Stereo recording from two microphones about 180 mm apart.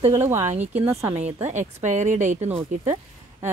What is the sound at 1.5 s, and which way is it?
Speech, 40° right (ahead or behind).